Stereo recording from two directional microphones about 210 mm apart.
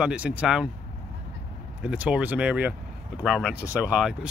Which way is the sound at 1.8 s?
5° right (ahead or behind).